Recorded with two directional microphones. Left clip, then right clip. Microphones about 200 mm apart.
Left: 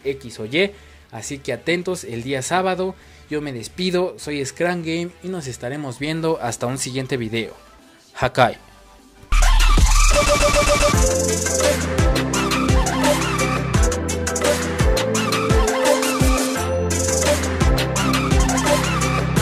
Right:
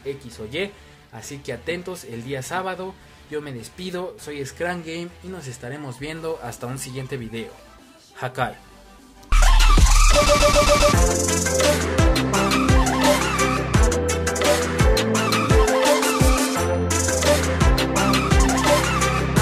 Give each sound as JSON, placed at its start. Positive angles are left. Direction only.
{"t": 0.0, "sound": "speech", "side_deg": 40}
{"t": 9.4, "sound": "music", "side_deg": 0}